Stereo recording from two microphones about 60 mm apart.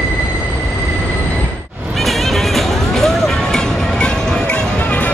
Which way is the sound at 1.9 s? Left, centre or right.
Centre.